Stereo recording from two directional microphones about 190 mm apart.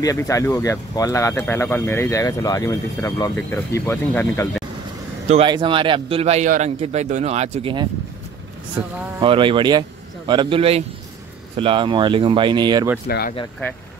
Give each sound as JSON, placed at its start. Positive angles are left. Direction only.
{"t": 0.0, "sound": "speech", "side_deg": 15}
{"t": 5.3, "sound": "a man's voice", "side_deg": -25}
{"t": 8.8, "sound": "a man's voice", "side_deg": -25}
{"t": 13.1, "sound": "speech", "side_deg": 50}